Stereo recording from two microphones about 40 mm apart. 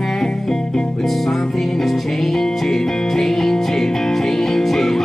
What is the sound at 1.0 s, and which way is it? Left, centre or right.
Music, centre.